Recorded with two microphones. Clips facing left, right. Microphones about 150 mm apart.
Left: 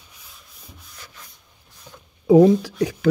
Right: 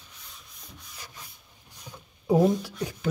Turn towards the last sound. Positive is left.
turn(degrees=90)